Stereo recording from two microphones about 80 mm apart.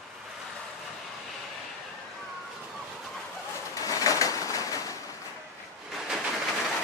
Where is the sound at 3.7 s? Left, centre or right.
Left.